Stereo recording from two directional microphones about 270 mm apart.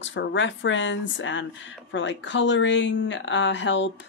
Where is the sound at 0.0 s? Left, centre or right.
Left.